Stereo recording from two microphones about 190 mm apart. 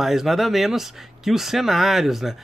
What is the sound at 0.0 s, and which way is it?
Speech, centre (ahead or behind).